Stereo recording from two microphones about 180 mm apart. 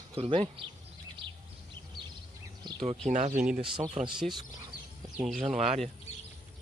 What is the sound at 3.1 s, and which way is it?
Speech, 40° right (ahead or behind).